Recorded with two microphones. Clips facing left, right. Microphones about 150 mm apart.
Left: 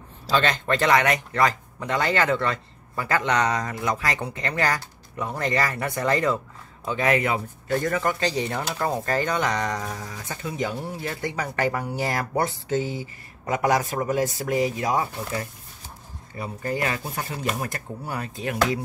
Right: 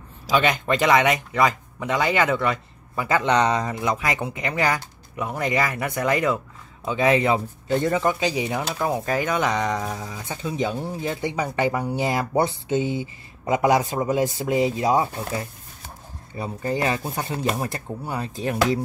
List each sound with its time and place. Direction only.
0.3 s speech: 15° right (ahead or behind); by 18.6 s 30° right (ahead or behind)